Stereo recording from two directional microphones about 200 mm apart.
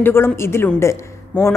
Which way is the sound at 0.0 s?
10° left (ahead or behind).